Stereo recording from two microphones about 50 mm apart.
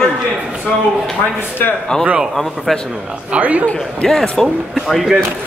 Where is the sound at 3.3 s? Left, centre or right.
Right.